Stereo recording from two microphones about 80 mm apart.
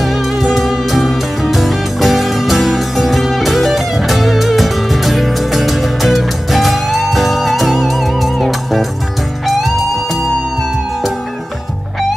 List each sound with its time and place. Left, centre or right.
0.0 s music: centre